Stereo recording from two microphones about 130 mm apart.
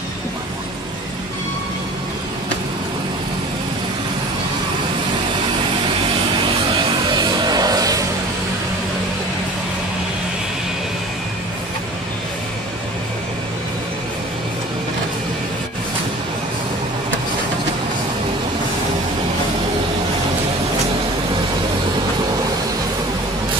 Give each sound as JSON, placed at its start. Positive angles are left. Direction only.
{"t": 7.1, "sound": "music", "side_deg": -30}